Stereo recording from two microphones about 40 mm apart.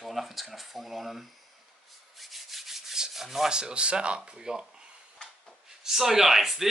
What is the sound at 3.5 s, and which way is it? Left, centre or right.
Speech, right.